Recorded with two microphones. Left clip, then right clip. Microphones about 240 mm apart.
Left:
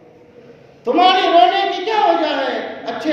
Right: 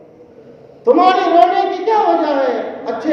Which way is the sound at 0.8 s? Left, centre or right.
Left.